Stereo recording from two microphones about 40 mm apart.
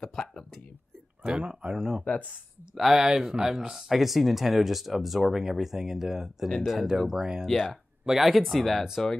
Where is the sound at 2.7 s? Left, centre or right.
Centre.